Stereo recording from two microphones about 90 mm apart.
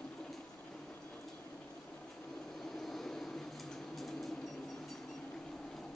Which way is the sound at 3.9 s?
Centre (ahead or behind).